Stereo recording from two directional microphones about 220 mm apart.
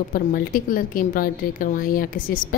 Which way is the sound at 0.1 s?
40° left (ahead or behind).